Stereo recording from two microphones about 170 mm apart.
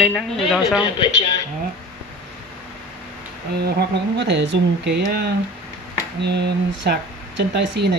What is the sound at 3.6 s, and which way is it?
Speech, 80° right.